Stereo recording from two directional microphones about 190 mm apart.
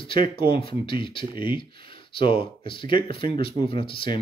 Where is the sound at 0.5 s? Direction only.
30° left (ahead or behind).